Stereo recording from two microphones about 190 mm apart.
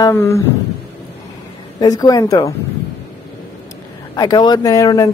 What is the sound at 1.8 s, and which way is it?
Speech, 20° left (ahead or behind).